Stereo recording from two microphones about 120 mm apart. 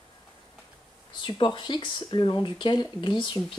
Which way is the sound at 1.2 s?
40° left (ahead or behind).